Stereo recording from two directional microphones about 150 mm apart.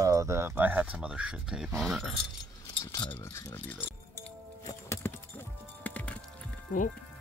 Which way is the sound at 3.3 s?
15° left (ahead or behind).